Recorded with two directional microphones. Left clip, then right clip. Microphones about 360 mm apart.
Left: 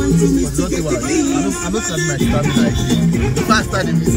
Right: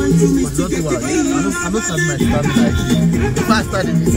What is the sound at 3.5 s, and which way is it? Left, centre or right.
Speech, right.